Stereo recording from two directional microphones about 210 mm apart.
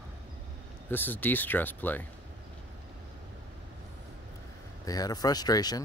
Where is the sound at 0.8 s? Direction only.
10° left (ahead or behind).